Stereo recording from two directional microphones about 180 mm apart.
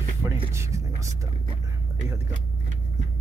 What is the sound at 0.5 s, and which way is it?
Speech, 15° right (ahead or behind).